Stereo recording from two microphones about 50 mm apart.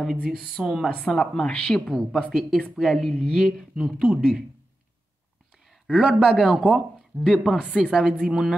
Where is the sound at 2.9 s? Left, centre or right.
Centre.